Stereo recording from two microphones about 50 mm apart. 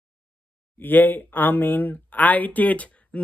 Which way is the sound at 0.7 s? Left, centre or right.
Left.